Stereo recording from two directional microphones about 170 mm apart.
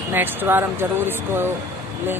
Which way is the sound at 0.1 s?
10° right (ahead or behind).